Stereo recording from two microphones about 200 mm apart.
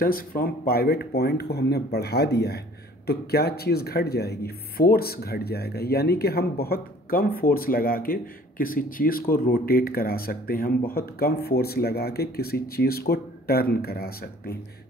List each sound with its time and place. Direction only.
0.0 s speech: 45° left (ahead or behind)